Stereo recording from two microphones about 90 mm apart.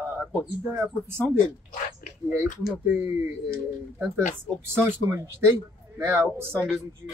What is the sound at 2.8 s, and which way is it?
Speech, 30° right (ahead or behind).